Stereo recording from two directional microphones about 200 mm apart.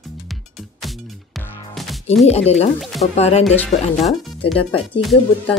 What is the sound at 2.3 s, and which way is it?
Speech, 30° left (ahead or behind).